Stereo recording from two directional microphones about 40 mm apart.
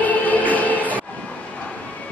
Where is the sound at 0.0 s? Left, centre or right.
Left.